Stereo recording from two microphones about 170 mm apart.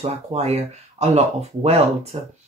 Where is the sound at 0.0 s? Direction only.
40° right (ahead or behind).